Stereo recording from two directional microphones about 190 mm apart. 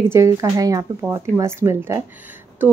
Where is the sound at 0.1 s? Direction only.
15° right (ahead or behind).